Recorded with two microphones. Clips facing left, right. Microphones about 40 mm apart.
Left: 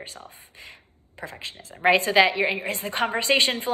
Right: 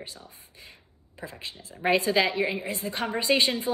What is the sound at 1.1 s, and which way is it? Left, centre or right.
A woman's voice, left.